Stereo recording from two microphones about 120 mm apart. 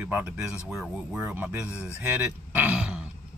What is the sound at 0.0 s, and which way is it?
Speech, 10° right (ahead or behind).